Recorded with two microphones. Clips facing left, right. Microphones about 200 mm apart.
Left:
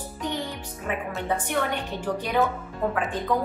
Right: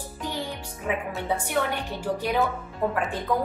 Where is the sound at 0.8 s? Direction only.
10° right (ahead or behind).